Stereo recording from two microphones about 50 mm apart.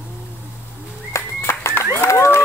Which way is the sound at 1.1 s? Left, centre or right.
Left.